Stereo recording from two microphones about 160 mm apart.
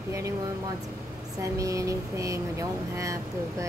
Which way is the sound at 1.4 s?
20° right (ahead or behind).